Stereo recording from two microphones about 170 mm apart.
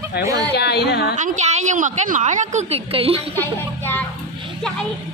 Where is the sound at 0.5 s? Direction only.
75° left (ahead or behind).